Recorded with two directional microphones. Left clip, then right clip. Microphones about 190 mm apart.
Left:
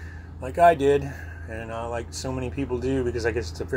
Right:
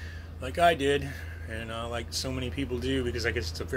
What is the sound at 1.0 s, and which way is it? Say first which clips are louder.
Speech: left 3 dB; 20° right (ahead or behind).